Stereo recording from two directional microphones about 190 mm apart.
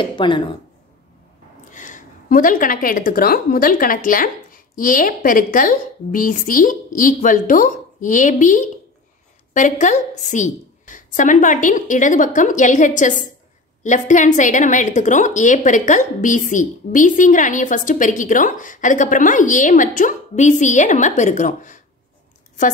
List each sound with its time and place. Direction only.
0.0 s speech: 25° left (ahead or behind)
1.7 s a woman's voice: 40° left (ahead or behind)